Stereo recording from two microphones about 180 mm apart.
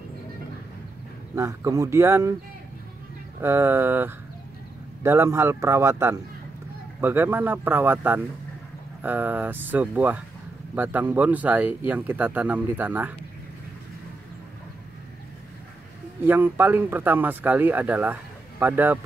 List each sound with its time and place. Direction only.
1.3 s speech: 15° right (ahead or behind)
3.3 s speech: 15° right (ahead or behind)
16.2 s speech: 10° right (ahead or behind)